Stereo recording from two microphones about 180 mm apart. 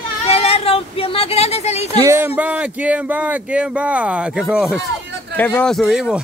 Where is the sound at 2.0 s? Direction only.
15° right (ahead or behind).